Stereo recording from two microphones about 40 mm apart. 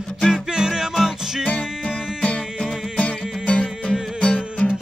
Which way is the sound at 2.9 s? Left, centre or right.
Left.